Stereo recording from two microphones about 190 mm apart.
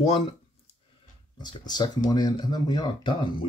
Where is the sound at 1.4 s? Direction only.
20° left (ahead or behind).